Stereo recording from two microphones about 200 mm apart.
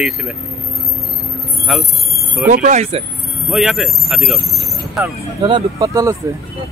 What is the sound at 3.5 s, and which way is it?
Speech, centre (ahead or behind).